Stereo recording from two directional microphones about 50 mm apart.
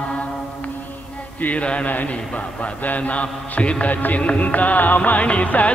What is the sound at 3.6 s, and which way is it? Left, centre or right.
Music, left.